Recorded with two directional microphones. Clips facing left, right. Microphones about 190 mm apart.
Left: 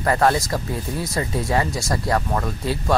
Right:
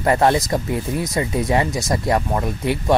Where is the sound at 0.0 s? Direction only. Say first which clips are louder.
Right 2 dB; 20° right (ahead or behind).